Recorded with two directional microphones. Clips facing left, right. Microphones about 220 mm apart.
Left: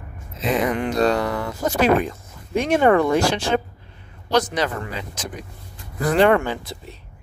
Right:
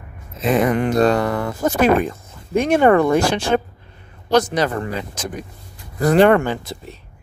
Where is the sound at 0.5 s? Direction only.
50° right (ahead or behind).